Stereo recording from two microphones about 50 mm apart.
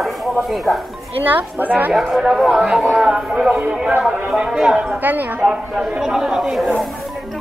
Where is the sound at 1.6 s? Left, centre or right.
Right.